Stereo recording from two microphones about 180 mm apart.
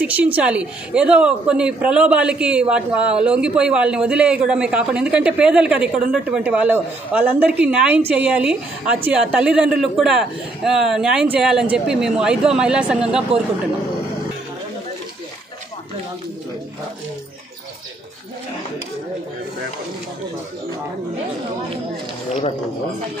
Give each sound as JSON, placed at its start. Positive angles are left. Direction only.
{"t": 0.0, "sound": "a man's voice", "side_deg": -10}
{"t": 22.3, "sound": "speech", "side_deg": 35}